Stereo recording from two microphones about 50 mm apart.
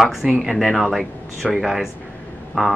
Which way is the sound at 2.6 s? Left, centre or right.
Centre.